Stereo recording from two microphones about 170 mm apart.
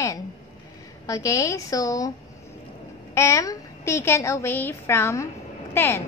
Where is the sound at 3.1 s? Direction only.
15° left (ahead or behind).